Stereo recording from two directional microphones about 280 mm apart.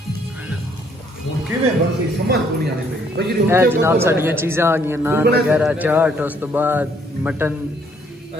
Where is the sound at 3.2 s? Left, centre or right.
Right.